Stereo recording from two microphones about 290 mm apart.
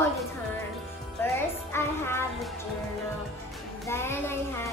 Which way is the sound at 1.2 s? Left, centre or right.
Centre.